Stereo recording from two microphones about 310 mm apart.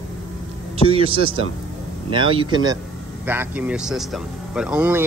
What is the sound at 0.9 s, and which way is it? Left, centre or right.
Speech, centre.